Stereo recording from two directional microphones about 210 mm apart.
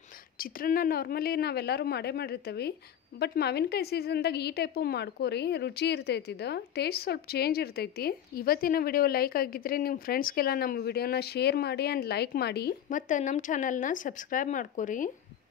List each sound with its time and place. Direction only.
0.4 s a woman's voice: 45° left (ahead or behind)